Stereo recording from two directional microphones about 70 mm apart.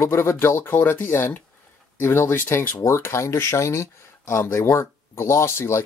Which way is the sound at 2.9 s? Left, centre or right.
Left.